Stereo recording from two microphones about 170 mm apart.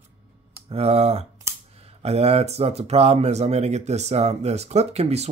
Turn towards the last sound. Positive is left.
turn(degrees=-40)  # may be behind; listen again after turning